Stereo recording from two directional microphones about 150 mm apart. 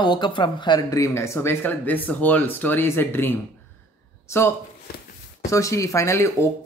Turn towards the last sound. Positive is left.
turn(degrees=20)  # may be behind; listen again after turning